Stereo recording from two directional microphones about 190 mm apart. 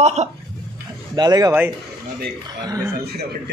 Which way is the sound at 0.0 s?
35° right (ahead or behind).